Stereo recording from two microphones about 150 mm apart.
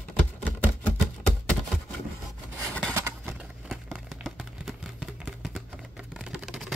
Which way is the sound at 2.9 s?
15° right (ahead or behind).